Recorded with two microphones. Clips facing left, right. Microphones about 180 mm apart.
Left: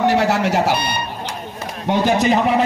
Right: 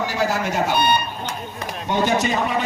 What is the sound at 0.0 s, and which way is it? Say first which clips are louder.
Speech: left 6 dB; 70° left (ahead or behind).